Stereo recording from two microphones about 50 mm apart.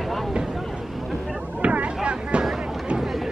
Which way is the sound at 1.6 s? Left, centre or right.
Right.